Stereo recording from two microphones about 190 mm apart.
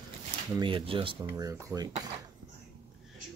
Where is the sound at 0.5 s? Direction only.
25° right (ahead or behind).